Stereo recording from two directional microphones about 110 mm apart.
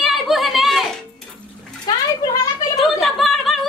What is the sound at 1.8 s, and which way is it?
Speech, 35° left (ahead or behind).